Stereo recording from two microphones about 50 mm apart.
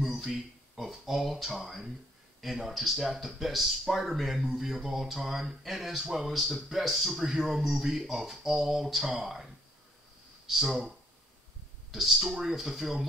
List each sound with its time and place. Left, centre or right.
0.0 s speech: centre